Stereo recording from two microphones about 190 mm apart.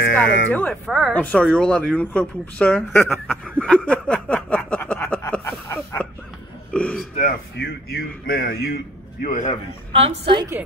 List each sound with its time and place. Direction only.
0.0 s speech: 65° left (ahead or behind)
0.5 s speech: 5° left (ahead or behind)
5.7 s a sound: 15° left (ahead or behind)
6.7 s a man's voice: 5° left (ahead or behind)
7.5 s speech: 55° left (ahead or behind)
9.2 s a man's voice: 45° left (ahead or behind)
9.9 s a woman's voice: 30° right (ahead or behind)